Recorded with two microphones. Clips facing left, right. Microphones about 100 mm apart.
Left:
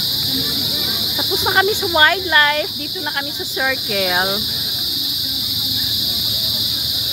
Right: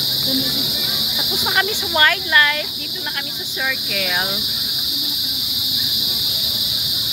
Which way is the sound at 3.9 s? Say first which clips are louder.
Left 6 dB; 35° left (ahead or behind).